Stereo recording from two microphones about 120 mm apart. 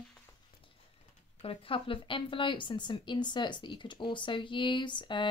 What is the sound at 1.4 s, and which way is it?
A woman's voice, 50° left (ahead or behind).